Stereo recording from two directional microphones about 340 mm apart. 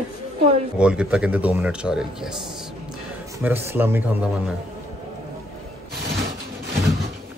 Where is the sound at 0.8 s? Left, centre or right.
Centre.